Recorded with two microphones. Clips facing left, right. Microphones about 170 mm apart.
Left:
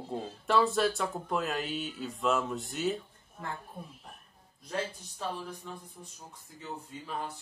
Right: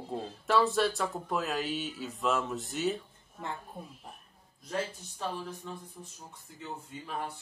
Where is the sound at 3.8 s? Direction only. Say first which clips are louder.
Right 1 dB; 20° right (ahead or behind).